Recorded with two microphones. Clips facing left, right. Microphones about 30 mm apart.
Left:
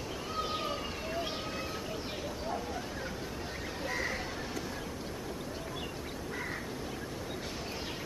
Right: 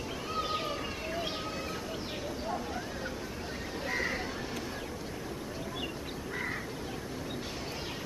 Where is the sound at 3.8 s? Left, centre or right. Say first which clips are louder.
Right 2 dB; centre.